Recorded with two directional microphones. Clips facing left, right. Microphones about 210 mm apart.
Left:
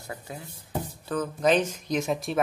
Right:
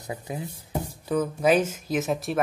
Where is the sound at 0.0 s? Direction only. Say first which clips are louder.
Right 5 dB; 20° right (ahead or behind).